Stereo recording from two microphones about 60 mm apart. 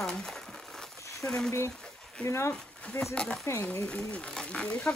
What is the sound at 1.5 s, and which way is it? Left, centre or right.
Speech, left.